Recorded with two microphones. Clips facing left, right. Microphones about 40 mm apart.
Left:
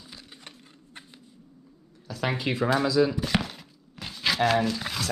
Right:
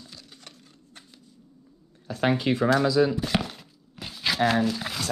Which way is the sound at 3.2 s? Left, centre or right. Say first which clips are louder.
Even; centre.